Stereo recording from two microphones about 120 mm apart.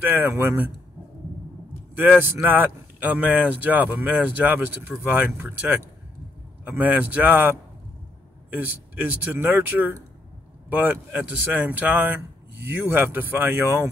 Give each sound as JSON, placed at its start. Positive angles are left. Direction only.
{"t": 0.0, "sound": "speech", "side_deg": -15}
{"t": 2.0, "sound": "speech", "side_deg": -15}